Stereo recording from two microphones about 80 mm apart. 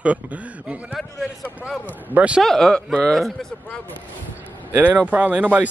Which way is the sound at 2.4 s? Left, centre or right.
Centre.